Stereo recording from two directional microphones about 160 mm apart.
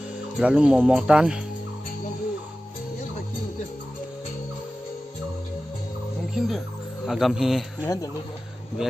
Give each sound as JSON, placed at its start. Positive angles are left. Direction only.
{"t": 0.4, "sound": "speech", "side_deg": -5}
{"t": 6.3, "sound": "speech", "side_deg": 0}
{"t": 7.8, "sound": "speech", "side_deg": 20}